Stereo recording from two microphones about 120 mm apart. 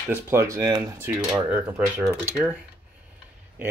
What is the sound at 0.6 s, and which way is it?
Speech, 35° right (ahead or behind).